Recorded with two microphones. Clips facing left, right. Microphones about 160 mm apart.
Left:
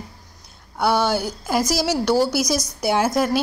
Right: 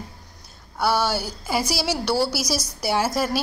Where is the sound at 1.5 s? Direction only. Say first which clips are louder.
Left 3 dB; 10° right (ahead or behind).